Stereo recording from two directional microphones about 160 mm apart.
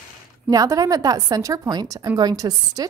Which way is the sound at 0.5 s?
20° right (ahead or behind).